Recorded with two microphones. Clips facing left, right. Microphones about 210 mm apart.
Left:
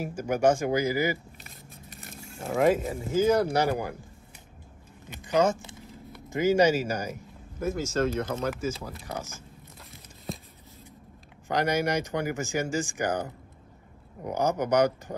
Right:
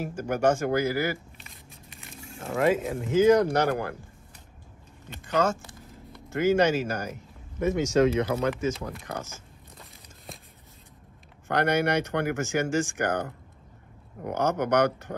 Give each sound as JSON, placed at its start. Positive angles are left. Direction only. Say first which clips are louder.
{"t": 0.0, "sound": "speech", "louder": "left 1 dB", "side_deg": 10}
{"t": 1.9, "sound": "a sound", "louder": "left 2 dB", "side_deg": 45}
{"t": 2.4, "sound": "speech", "louder": "left 1 dB", "side_deg": 0}
{"t": 5.4, "sound": "speech", "louder": "left 2 dB", "side_deg": 15}
{"t": 8.5, "sound": "speech", "louder": "right 3 dB", "side_deg": 5}
{"t": 9.8, "sound": "a sound", "louder": "left 1 dB", "side_deg": 0}
{"t": 11.4, "sound": "speech", "louder": "right 2 dB", "side_deg": 10}
{"t": 14.3, "sound": "speech", "louder": "even", "side_deg": 10}